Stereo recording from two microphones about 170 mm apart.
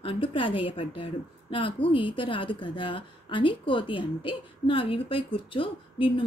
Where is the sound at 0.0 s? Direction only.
30° left (ahead or behind).